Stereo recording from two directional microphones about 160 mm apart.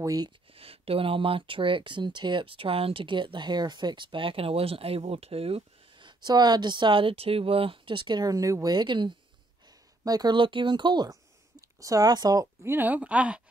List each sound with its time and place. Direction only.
0.0 s speech: 20° right (ahead or behind)
0.5 s speech: 35° right (ahead or behind); by 13.4 s 10° right (ahead or behind)